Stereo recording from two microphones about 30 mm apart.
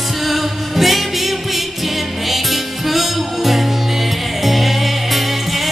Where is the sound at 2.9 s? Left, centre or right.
Centre.